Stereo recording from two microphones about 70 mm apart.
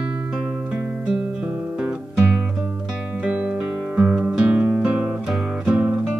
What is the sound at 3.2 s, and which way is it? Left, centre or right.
Music, centre.